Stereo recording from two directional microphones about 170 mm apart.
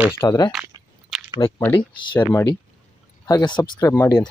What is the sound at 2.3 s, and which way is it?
Speech, 15° left (ahead or behind).